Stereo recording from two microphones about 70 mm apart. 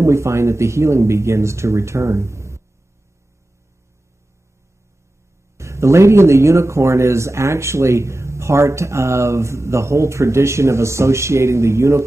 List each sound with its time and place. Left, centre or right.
0.0 s speech: right
5.6 s speech: right